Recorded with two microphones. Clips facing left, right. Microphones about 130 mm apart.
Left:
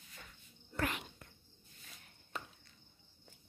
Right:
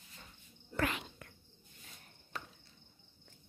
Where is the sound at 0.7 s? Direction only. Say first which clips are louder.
Right 2 dB; 90° right.